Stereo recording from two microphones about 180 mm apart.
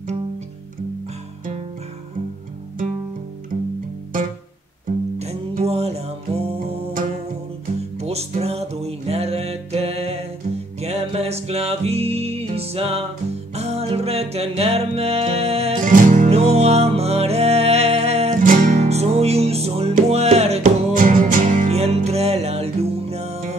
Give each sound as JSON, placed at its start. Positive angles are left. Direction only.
{"t": 5.6, "sound": "music", "side_deg": -35}
{"t": 8.0, "sound": "music", "side_deg": -35}
{"t": 15.8, "sound": "music", "side_deg": -45}
{"t": 18.4, "sound": "music", "side_deg": -50}